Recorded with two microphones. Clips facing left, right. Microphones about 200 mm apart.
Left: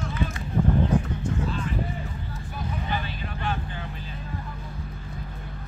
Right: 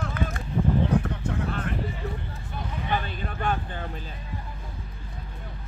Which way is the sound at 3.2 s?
45° right (ahead or behind).